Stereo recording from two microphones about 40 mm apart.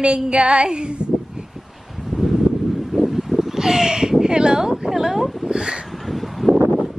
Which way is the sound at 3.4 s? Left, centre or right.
Centre.